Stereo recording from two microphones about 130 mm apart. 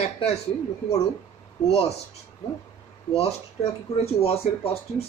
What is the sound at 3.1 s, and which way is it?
Speech, 50° left (ahead or behind).